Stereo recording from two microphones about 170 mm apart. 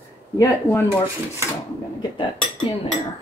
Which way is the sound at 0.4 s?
15° left (ahead or behind).